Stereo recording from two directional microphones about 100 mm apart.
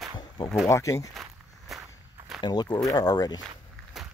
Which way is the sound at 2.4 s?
45° left (ahead or behind).